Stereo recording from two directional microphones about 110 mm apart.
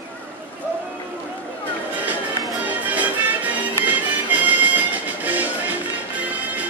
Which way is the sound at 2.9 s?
15° right (ahead or behind).